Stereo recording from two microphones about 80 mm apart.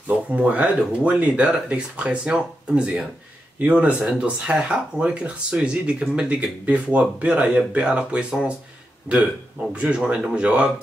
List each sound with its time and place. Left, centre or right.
0.3 s speech: centre